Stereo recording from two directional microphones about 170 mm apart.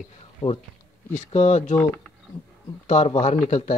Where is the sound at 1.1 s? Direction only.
40° left (ahead or behind).